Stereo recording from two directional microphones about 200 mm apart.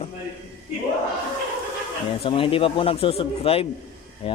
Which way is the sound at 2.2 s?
25° left (ahead or behind).